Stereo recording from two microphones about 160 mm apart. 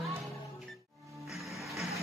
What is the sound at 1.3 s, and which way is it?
Music, centre (ahead or behind).